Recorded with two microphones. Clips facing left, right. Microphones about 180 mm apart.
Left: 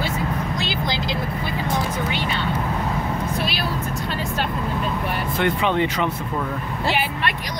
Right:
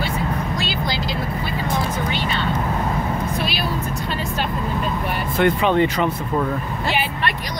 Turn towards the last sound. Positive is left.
turn(degrees=-45)  # may be behind; listen again after turning